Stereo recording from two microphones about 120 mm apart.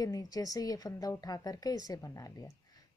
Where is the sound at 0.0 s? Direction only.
30° left (ahead or behind).